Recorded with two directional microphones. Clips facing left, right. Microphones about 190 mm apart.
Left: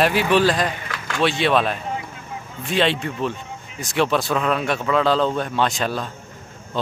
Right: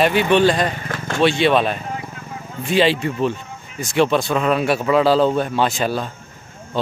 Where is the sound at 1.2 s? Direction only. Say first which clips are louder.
Right 3 dB; centre (ahead or behind).